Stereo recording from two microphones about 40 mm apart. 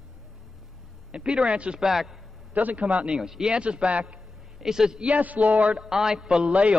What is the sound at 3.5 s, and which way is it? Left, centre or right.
Speech, right.